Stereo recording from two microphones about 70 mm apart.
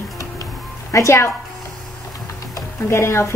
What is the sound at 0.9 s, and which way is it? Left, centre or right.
Speech, left.